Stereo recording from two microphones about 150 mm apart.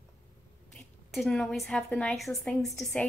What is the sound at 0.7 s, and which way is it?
A woman's voice, 5° left (ahead or behind).